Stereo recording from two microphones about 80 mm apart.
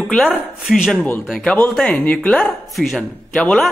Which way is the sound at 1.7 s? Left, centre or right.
Centre.